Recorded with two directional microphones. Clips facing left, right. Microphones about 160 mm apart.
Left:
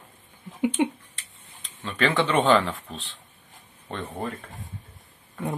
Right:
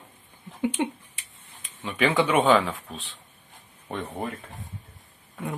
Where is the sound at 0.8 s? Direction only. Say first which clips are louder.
Left 5 dB; 15° left (ahead or behind).